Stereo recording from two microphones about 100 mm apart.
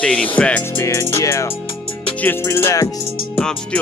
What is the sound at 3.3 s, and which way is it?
Music, 10° left (ahead or behind).